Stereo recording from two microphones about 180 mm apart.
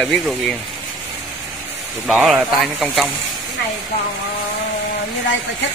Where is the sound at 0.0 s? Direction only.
Centre (ahead or behind).